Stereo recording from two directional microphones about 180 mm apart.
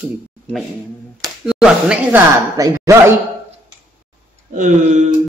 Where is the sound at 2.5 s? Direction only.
20° right (ahead or behind).